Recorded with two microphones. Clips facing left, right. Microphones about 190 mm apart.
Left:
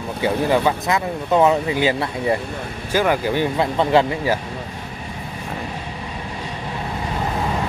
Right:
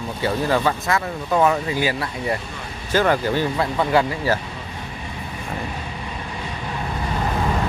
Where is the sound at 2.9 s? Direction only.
10° left (ahead or behind).